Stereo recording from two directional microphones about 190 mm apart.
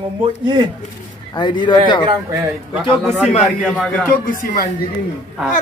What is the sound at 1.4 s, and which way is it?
Speech, 25° left (ahead or behind).